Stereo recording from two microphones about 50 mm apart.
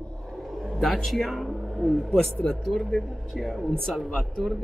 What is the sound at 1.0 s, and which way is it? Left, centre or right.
Speech, centre.